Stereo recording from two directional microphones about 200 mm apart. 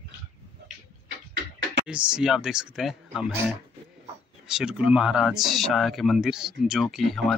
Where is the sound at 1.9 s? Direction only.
5° right (ahead or behind).